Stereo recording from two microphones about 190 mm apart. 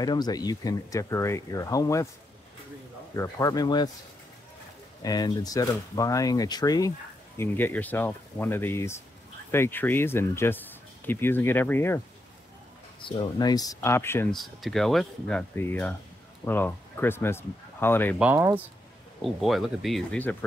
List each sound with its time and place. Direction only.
0.0 s speech: 20° left (ahead or behind)
3.2 s speech: 15° left (ahead or behind)
5.0 s speech: 20° left (ahead or behind)
13.0 s speech: 25° left (ahead or behind)
14.3 s speech: centre (ahead or behind)
18.2 s speech: 10° right (ahead or behind); by 20.3 s 5° left (ahead or behind)